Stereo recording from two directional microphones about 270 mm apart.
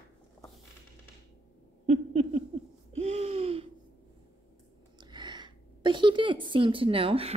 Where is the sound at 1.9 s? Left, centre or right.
Right.